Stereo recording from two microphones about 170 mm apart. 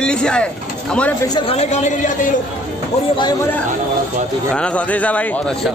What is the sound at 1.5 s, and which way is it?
Speech, 40° left (ahead or behind).